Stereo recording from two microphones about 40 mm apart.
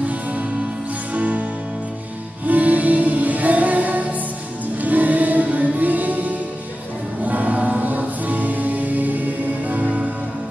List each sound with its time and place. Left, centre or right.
1.1 s music: right
2.4 s music: right